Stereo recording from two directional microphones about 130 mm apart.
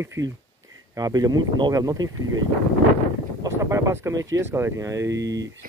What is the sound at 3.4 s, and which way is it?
Speech, 25° right (ahead or behind).